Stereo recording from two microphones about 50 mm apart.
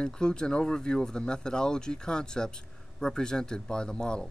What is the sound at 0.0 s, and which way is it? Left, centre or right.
Speech, centre.